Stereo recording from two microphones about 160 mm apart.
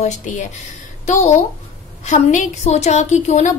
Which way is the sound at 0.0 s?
45° left (ahead or behind).